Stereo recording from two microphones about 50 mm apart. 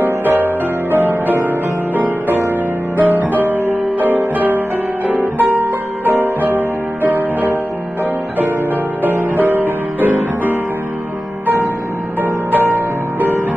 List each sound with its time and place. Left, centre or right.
0.0 s music: right
9.0 s music: right